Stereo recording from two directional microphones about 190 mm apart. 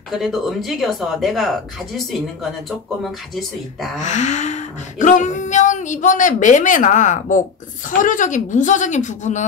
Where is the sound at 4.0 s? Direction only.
40° left (ahead or behind).